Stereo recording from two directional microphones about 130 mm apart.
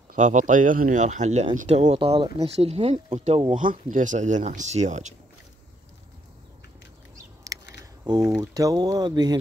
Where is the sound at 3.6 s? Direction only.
90° right; by 5.1 s 65° right (ahead or behind).